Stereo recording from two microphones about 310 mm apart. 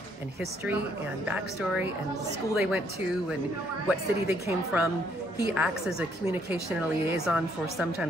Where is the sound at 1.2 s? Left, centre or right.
Centre.